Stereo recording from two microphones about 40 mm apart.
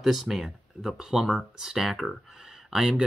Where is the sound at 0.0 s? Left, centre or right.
Centre.